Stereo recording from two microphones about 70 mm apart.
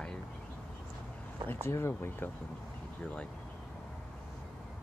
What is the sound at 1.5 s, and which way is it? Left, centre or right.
Speech, left.